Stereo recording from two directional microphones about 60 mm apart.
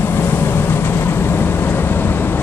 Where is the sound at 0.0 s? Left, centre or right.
Left.